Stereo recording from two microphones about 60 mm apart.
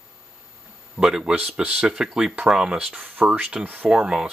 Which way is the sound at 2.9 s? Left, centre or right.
Right.